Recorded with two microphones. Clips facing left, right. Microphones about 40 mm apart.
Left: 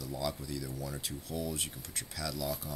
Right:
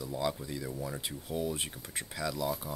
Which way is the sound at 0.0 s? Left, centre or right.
Right.